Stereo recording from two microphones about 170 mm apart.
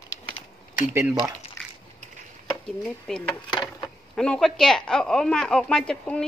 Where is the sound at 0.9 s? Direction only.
15° right (ahead or behind).